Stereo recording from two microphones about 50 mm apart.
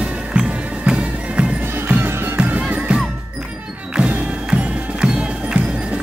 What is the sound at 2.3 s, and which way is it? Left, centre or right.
Music, right.